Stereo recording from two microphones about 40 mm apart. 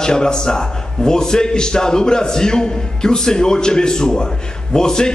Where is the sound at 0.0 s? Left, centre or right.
Centre.